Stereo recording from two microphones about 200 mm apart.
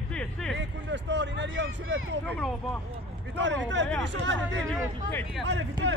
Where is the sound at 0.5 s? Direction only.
60° right (ahead or behind).